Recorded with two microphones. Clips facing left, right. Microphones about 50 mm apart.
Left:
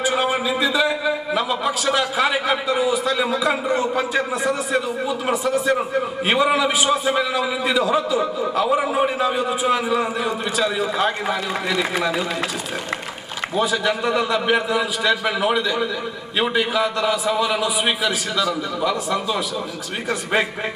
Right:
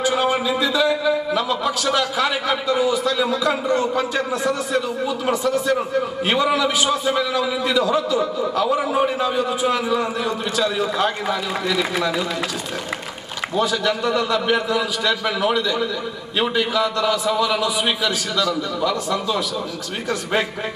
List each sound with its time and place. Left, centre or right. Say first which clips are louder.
0.0 s a man's voice: right 1 dB; centre
13.6 s a man's voice: even; centre